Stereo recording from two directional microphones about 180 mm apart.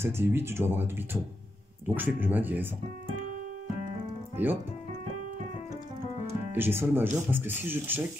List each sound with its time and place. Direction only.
0.0 s speech: 10° right (ahead or behind)
2.0 s speech: 10° right (ahead or behind)
4.4 s speech: 10° right (ahead or behind)
6.5 s speech: 10° right (ahead or behind)